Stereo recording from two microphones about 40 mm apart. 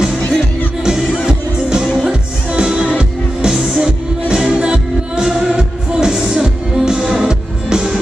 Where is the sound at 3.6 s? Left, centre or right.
Centre.